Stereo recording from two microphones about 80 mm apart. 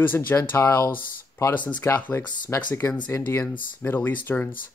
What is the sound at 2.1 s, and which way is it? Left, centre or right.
Speech, left.